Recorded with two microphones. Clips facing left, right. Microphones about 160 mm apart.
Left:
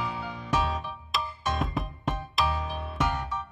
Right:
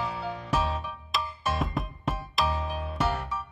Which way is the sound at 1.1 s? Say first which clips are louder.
Even; centre (ahead or behind).